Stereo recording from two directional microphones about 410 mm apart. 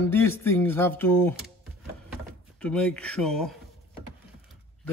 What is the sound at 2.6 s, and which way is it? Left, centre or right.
Speech, centre.